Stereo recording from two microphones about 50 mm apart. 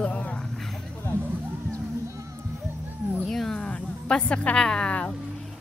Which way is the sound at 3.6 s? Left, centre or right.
Left.